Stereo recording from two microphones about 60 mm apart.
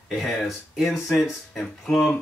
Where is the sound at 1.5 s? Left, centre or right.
Centre.